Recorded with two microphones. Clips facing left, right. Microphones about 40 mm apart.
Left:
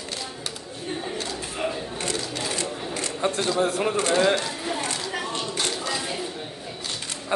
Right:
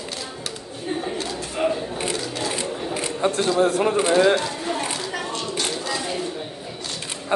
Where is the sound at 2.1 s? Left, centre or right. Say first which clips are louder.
Right 3 dB; centre.